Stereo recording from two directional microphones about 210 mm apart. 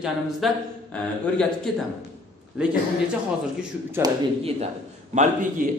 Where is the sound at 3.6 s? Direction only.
10° right (ahead or behind).